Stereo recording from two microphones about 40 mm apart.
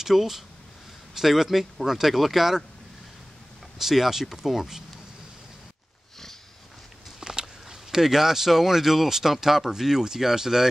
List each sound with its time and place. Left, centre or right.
0.0 s speech: centre
3.7 s speech: centre
7.2 s a sound: centre
7.9 s speech: centre